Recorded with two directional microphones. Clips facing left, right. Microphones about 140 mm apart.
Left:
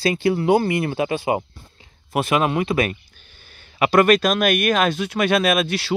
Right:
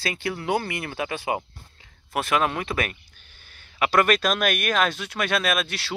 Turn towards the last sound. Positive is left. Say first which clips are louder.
# left 7 dB
turn(degrees=5)  # may be behind; listen again after turning